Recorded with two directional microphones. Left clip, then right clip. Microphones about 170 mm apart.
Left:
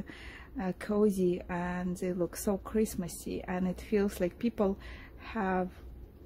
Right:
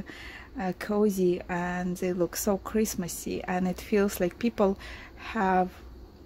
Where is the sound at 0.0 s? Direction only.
5° right (ahead or behind).